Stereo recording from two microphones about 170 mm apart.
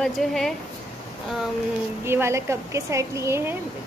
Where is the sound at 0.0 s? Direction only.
Centre (ahead or behind).